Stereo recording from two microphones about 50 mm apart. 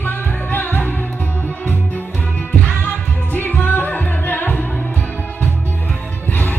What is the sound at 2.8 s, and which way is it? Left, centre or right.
Music, left.